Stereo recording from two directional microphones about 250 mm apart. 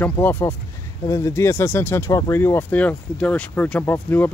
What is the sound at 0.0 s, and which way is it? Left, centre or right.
Speech, centre.